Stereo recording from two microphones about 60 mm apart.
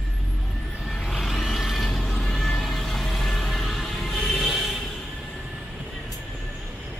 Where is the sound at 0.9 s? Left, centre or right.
Centre.